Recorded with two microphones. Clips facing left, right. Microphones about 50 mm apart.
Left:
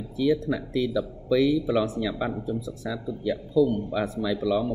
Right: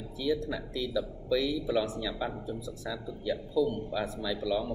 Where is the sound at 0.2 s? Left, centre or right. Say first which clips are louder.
Left 7 dB; left.